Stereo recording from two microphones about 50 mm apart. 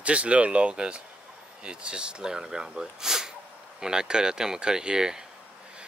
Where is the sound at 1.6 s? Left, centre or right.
Centre.